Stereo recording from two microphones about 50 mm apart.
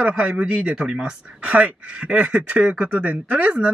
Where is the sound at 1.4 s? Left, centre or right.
Right.